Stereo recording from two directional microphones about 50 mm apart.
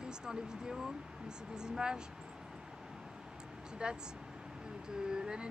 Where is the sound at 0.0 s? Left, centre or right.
Centre.